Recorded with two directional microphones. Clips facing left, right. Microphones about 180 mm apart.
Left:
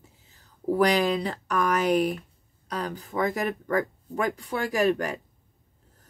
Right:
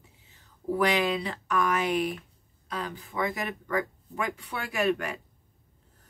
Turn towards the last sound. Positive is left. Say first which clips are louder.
# left 4 dB
turn(degrees=40)  # may be behind; listen again after turning